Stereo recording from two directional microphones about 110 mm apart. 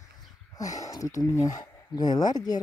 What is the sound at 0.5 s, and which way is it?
Speech, 30° left (ahead or behind).